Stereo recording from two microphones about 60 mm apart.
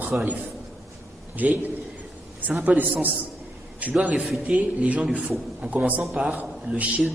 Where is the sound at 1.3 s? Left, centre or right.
Right.